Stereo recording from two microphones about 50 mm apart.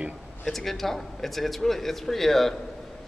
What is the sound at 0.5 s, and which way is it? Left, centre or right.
Speech, centre.